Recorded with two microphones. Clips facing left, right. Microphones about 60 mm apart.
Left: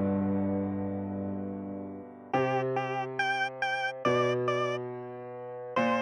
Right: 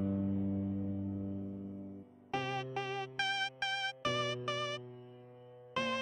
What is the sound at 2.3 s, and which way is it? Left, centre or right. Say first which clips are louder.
Music: left 10 dB; left.